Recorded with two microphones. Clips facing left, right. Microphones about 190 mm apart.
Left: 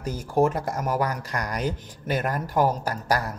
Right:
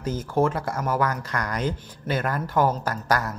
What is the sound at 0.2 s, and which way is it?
Speech, 15° left (ahead or behind).